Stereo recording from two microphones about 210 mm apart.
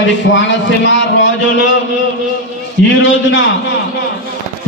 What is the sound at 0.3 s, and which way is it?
A man's voice, 60° left (ahead or behind).